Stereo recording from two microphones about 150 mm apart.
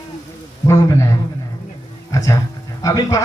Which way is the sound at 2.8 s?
25° left (ahead or behind).